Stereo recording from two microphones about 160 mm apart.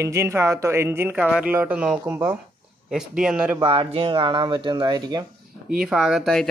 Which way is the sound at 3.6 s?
35° right (ahead or behind).